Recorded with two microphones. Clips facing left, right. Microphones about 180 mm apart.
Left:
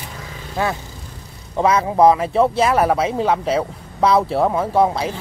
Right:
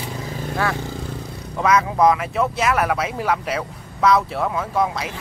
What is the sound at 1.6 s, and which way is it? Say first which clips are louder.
Speech: left 3 dB; 30° left (ahead or behind).